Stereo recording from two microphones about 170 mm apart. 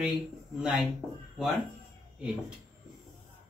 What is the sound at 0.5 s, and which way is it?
Speech, 5° right (ahead or behind).